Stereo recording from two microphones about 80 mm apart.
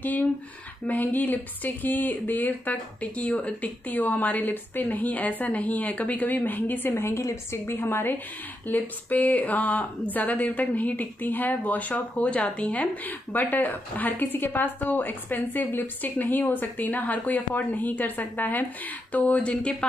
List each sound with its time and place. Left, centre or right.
0.8 s a woman's voice: left
6.9 s a woman's voice: left; by 19.9 s centre